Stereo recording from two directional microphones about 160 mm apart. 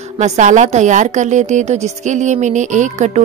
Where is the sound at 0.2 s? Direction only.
50° right (ahead or behind).